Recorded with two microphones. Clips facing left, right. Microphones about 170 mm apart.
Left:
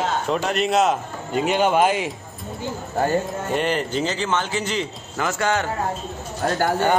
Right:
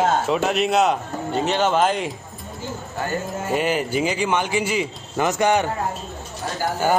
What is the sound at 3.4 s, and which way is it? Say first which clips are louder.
Mantra: right 1 dB; 5° right (ahead or behind).